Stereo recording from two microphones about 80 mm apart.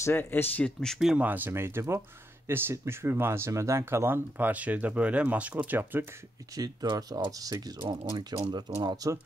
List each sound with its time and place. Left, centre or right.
0.0 s speech: left
0.7 s speech: centre
0.9 s speech: centre
1.2 s speech: right
6.5 s speech: right
7.9 s speech: right